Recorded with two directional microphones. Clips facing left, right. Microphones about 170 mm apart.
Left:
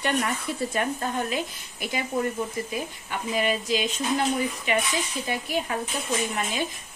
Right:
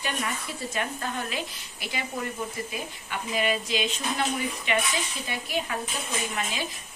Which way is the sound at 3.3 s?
40° left (ahead or behind).